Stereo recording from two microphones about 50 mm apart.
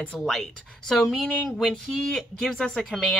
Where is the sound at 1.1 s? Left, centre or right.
Centre.